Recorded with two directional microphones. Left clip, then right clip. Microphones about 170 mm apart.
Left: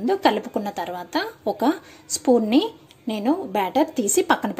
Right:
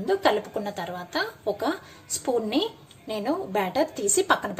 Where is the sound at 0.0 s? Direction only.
45° left (ahead or behind).